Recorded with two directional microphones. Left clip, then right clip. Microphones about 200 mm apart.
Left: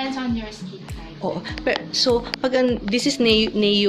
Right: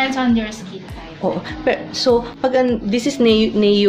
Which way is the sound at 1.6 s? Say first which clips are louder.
Right 2 dB; 25° left (ahead or behind).